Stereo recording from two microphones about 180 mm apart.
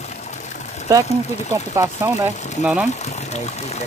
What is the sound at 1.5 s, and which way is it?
Speech, 20° right (ahead or behind).